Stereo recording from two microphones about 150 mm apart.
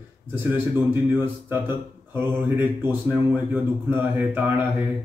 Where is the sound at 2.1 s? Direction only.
15° right (ahead or behind).